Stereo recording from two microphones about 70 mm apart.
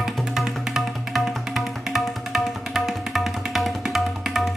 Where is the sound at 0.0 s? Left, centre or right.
Centre.